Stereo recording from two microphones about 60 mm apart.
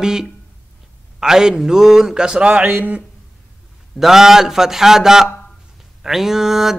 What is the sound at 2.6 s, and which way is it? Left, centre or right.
Speech, right.